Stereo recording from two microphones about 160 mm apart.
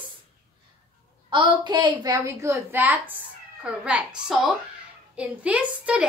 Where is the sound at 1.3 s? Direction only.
30° right (ahead or behind).